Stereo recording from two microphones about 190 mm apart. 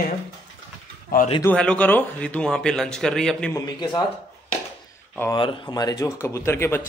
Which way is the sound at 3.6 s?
20° left (ahead or behind).